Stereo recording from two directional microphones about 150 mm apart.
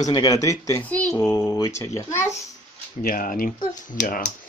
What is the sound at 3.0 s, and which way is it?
Speech, 70° left (ahead or behind).